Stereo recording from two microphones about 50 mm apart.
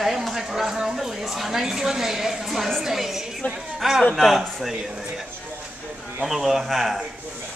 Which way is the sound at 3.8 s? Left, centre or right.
Centre.